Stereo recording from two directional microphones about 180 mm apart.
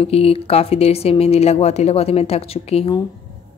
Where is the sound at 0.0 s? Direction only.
35° left (ahead or behind).